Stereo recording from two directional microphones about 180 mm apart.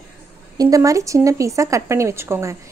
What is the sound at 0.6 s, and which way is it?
Speech, 20° right (ahead or behind).